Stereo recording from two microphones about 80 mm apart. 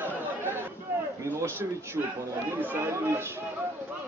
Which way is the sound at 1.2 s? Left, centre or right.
Right.